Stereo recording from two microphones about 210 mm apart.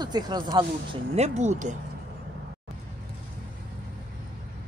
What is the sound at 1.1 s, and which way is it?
Speech, 30° right (ahead or behind).